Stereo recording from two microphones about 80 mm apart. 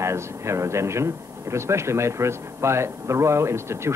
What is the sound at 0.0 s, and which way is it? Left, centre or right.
Speech, right.